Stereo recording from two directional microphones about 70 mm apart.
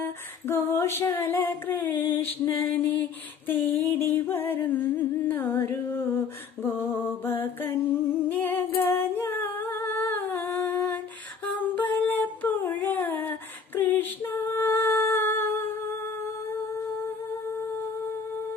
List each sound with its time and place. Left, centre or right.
0.5 s female singing: left
1.1 s music: left
5.9 s humming: left
11.4 s a sound: left
13.7 s music: left